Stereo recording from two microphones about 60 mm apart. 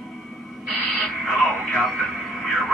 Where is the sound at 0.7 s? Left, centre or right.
Centre.